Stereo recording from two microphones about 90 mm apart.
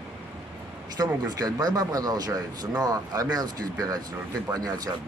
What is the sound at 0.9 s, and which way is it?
Speech, 45° right (ahead or behind).